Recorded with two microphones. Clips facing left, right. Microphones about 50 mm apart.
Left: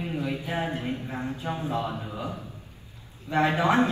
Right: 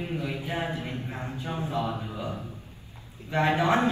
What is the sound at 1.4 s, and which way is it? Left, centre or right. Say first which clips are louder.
Speech: right 1 dB; left.